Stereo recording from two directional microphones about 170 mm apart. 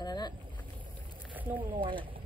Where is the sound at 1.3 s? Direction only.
10° right (ahead or behind).